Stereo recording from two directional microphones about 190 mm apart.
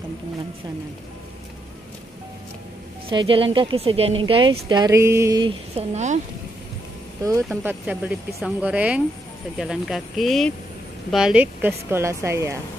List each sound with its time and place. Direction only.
3.1 s speech: 25° right (ahead or behind)
5.8 s speech: 35° right (ahead or behind)
7.6 s a woman's voice: 5° right (ahead or behind)